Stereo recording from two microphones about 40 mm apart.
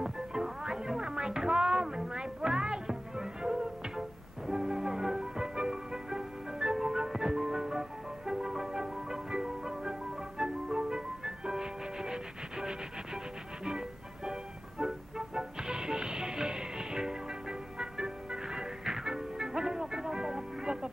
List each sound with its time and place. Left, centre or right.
0.0 s music: centre